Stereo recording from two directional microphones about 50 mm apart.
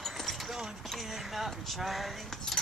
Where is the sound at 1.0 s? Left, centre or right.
Centre.